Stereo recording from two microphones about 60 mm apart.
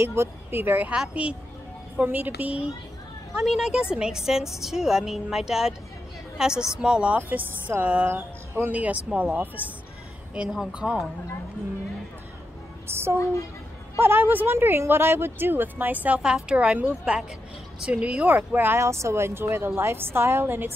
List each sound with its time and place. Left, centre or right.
0.0 s speech: right
2.0 s speech: right
3.3 s a woman's voice: centre
7.2 s speech: right
8.1 s speech: right
8.7 s speech: right
10.4 s a woman's voice: centre
12.9 s a woman's voice: right
13.2 s a woman's voice: left
13.9 s speech: right
16.2 s a woman's voice: centre
18.2 s speech: right
18.8 s a woman's voice: right